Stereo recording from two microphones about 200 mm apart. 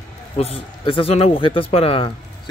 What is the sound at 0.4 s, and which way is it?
Speech, 30° left (ahead or behind).